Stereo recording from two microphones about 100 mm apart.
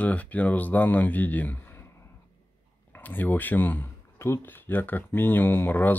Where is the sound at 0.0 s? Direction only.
15° left (ahead or behind).